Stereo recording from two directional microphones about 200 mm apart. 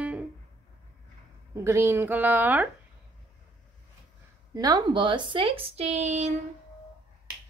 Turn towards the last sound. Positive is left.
turn(degrees=-35)  # may be behind; listen again after turning